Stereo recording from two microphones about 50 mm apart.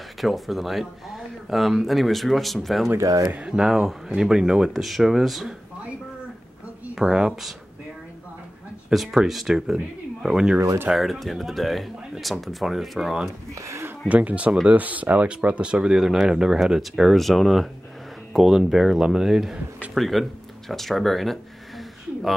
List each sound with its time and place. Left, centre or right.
0.2 s speech: centre
3.4 s speech: centre
4.7 s speech: centre
7.0 s speech: centre
8.9 s speech: centre
11.0 s speech: centre
13.6 s speech: right
14.0 s speech: right; by 19.6 s centre
19.9 s a sound: centre